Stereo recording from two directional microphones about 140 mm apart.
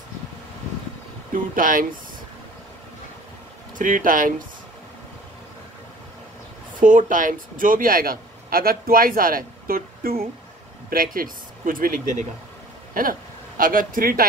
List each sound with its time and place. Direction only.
1.3 s speech: 75° right (ahead or behind)
3.7 s speech: 75° right (ahead or behind)
6.8 s speech: 70° right (ahead or behind)
13.6 s speech: 85° right